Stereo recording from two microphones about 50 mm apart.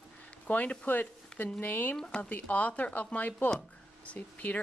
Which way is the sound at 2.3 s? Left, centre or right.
Left.